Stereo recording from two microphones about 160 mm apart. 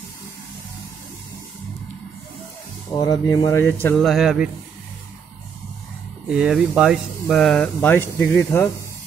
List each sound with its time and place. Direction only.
2.9 s speech: 25° left (ahead or behind)
3.8 s speech: 5° left (ahead or behind)
6.2 s speech: 5° right (ahead or behind); by 8.6 s 15° left (ahead or behind)